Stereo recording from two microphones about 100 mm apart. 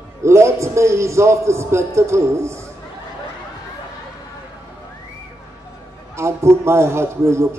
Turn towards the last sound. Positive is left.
turn(degrees=-30)  # may be behind; listen again after turning